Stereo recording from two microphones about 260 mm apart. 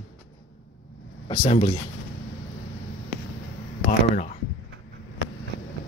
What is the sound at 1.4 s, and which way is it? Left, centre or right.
Speech, left.